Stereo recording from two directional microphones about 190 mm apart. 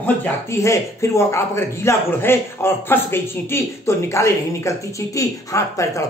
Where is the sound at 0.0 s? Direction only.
10° left (ahead or behind).